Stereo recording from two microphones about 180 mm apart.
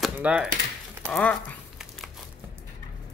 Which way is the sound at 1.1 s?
5° left (ahead or behind).